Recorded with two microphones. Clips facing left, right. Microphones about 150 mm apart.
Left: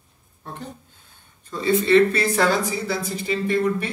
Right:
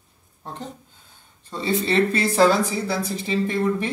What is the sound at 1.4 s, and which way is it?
Speech, 30° right (ahead or behind).